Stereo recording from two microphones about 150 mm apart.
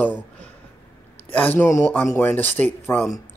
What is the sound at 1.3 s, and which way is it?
Speech, 10° left (ahead or behind).